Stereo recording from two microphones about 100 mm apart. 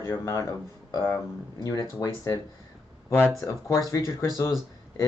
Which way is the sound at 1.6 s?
35° left (ahead or behind).